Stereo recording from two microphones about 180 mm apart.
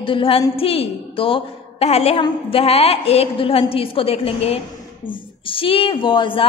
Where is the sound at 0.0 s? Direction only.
30° left (ahead or behind).